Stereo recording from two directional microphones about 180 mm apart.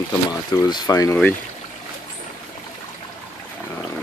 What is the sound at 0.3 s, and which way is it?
Speech, 20° left (ahead or behind).